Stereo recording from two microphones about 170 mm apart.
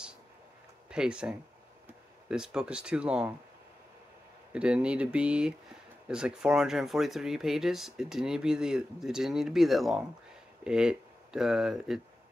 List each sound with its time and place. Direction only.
0.8 s speech: 5° right (ahead or behind)
4.5 s speech: 5° right (ahead or behind)